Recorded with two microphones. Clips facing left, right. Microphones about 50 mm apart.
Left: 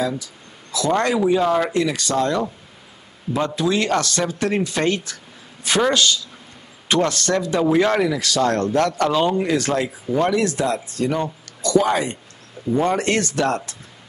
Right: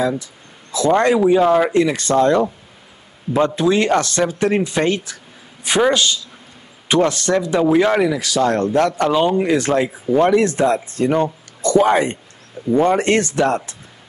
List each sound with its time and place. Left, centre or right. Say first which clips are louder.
0.0 s speech: right 4 dB; right
1.8 s speech: right 5 dB; right
7.6 s speech: right 2 dB; centre; by 13.6 s right